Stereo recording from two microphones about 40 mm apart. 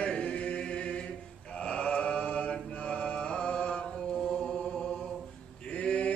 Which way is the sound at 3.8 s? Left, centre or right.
Centre.